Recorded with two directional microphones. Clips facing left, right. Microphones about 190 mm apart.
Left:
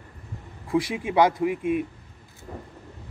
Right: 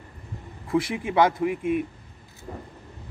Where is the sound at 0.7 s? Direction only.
15° left (ahead or behind).